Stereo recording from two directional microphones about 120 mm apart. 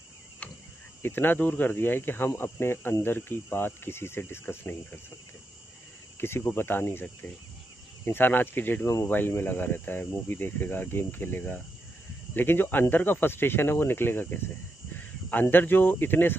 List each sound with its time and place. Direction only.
0.4 s cricket: 10° left (ahead or behind)
1.0 s speech: 15° left (ahead or behind)
6.1 s cricket: 20° left (ahead or behind)
8.0 s speech: 15° left (ahead or behind)